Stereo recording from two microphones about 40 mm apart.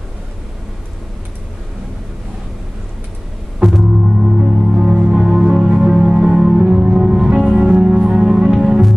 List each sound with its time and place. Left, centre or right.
3.9 s music: centre